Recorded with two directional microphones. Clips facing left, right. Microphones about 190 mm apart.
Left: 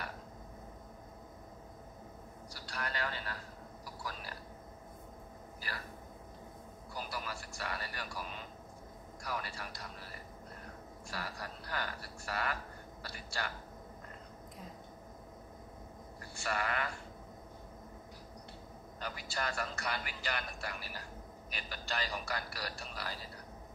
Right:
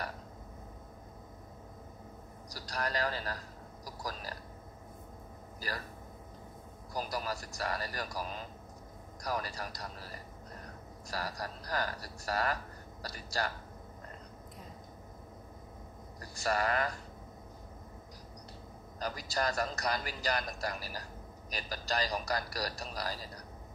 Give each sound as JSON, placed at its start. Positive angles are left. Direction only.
{"t": 2.5, "sound": "a sound", "side_deg": -40}
{"t": 5.6, "sound": "speech", "side_deg": -40}
{"t": 6.9, "sound": "a man's voice", "side_deg": -40}
{"t": 16.2, "sound": "speech", "side_deg": -40}
{"t": 18.9, "sound": "a man's voice", "side_deg": -40}